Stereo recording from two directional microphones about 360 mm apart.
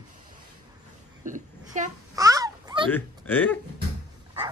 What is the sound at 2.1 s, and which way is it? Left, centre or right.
Babbling, centre.